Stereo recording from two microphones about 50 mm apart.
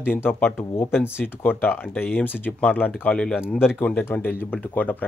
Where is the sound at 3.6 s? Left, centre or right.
Left.